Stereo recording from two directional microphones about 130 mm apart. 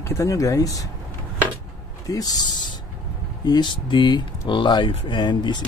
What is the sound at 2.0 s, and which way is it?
Speech, 30° left (ahead or behind).